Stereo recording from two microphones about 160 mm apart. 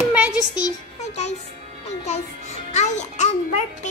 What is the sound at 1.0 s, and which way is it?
Music, 45° left (ahead or behind).